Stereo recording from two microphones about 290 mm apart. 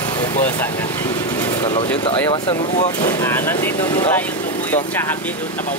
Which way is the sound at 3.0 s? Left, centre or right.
Centre.